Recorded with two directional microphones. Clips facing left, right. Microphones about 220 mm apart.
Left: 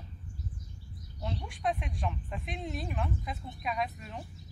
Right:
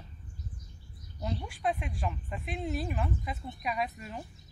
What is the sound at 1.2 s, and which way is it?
Speech, centre (ahead or behind).